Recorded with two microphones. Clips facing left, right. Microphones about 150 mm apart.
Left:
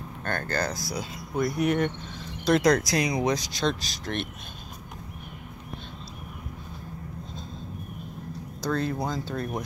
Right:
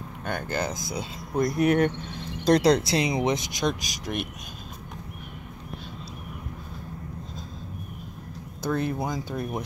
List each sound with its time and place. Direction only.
0.2 s speech: 10° right (ahead or behind)
1.4 s speech: 55° right (ahead or behind)
2.6 s speech: 30° right (ahead or behind); by 4.3 s 15° right (ahead or behind)
8.6 s speech: 15° right (ahead or behind)